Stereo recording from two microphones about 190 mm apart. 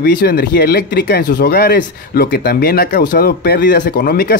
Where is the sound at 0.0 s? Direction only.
55° left (ahead or behind).